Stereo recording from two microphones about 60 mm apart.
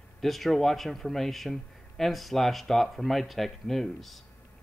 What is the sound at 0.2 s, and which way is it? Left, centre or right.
Speech, centre.